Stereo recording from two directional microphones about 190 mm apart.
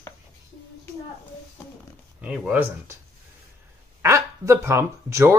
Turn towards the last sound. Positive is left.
turn(degrees=-15)  # may be behind; listen again after turning